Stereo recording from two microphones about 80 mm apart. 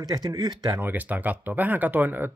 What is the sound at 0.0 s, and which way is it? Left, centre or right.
Speech, right.